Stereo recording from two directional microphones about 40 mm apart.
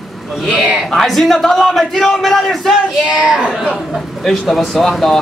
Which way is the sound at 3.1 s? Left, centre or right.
Right.